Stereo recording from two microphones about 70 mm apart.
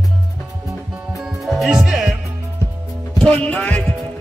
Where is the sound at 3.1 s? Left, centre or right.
Centre.